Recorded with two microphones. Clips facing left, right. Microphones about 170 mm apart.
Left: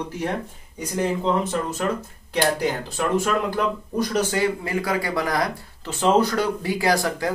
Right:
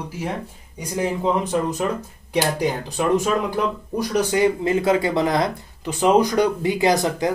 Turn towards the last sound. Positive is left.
turn(degrees=-20)  # may be behind; listen again after turning